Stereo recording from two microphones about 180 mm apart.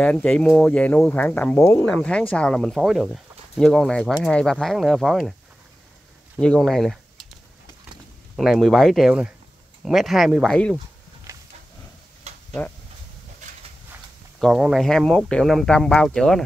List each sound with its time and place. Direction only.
0.0 s speech: 5° left (ahead or behind)
6.3 s speech: 5° left (ahead or behind)
8.4 s speech: centre (ahead or behind)
11.3 s wild animals: 15° right (ahead or behind)
12.3 s a sound: 35° right (ahead or behind)
14.4 s speech: centre (ahead or behind)